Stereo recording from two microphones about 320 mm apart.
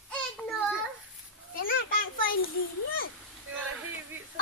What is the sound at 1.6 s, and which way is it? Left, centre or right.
Speech, left.